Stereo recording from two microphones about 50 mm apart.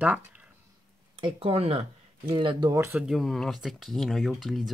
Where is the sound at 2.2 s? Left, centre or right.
Right.